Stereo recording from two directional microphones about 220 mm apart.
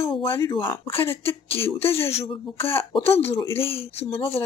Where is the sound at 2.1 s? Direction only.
25° left (ahead or behind).